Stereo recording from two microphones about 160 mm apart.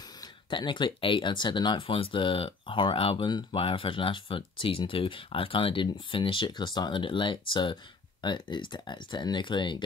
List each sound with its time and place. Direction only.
0.2 s speech: 30° left (ahead or behind)